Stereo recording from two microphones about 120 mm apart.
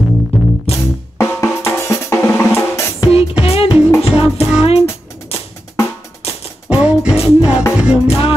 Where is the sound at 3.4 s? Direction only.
55° left (ahead or behind).